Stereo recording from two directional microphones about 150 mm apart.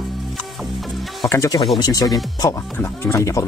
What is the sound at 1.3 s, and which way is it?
Speech, 25° left (ahead or behind).